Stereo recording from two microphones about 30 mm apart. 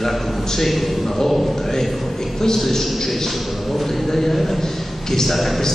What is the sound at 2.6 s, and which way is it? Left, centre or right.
A man's voice, centre.